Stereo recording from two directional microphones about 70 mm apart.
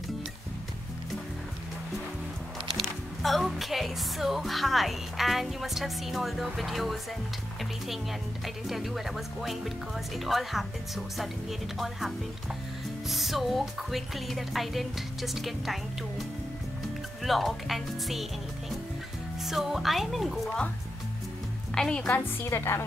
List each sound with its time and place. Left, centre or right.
2.8 s speech: centre
8.6 s speech: centre
13.1 s speech: centre
19.4 s speech: centre
21.7 s a woman's voice: centre
22.6 s a woman's voice: left